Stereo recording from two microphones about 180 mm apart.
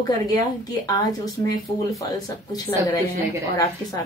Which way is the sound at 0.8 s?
20° left (ahead or behind).